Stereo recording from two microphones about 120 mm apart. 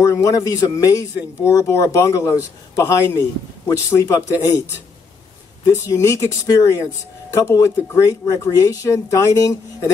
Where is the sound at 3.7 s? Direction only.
25° left (ahead or behind).